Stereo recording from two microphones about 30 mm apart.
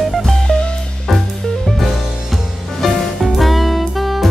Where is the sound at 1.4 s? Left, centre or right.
Centre.